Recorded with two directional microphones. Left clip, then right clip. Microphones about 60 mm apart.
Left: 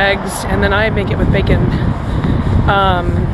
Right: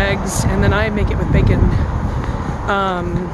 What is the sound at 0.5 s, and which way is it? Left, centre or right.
Speech, centre.